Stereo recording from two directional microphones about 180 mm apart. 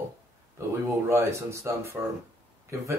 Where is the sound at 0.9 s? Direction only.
15° right (ahead or behind).